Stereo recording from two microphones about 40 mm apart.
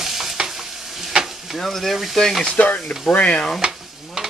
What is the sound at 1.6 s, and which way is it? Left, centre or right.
Speech, centre.